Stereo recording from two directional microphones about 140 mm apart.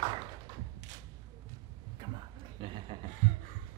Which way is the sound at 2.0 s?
30° right (ahead or behind).